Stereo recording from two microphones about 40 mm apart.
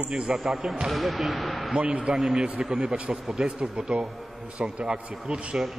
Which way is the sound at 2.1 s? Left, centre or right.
Centre.